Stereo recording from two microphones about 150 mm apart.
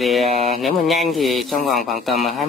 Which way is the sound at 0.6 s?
Centre (ahead or behind).